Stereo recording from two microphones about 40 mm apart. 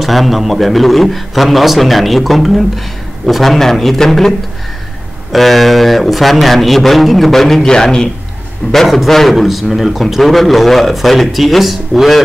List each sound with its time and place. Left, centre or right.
0.0 s a man's voice: centre
5.3 s a man's voice: centre
7.6 s a man's voice: centre
8.7 s a man's voice: centre